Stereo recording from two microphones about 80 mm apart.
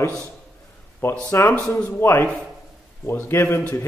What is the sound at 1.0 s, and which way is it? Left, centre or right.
Speech, left.